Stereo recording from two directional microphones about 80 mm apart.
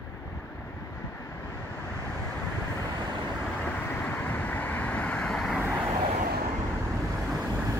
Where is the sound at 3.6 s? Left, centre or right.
Left.